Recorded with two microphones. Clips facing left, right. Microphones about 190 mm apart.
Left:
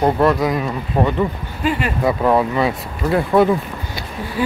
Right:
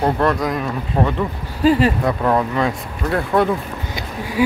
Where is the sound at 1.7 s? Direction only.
35° right (ahead or behind).